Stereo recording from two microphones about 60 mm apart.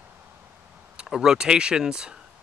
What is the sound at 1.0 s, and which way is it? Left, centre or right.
Speech, centre.